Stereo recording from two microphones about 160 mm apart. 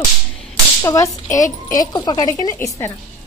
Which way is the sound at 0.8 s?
15° left (ahead or behind).